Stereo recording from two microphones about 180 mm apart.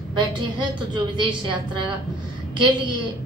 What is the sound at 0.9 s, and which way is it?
Speech, 25° right (ahead or behind).